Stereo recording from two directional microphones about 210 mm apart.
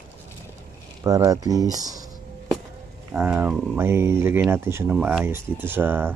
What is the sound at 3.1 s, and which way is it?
Speech, 5° right (ahead or behind).